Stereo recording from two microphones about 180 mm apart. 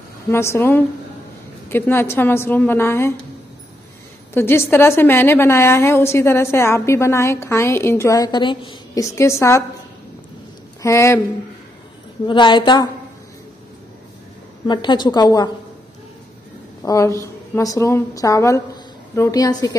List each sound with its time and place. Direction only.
0.3 s a woman's voice: 15° left (ahead or behind)
4.3 s a woman's voice: 15° left (ahead or behind)
10.8 s speech: 15° left (ahead or behind)
12.3 s a woman's voice: 25° left (ahead or behind)
14.7 s a woman's voice: 25° left (ahead or behind)
16.8 s a woman's voice: 20° left (ahead or behind)